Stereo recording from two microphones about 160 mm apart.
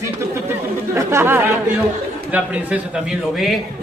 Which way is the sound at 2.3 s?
10° right (ahead or behind).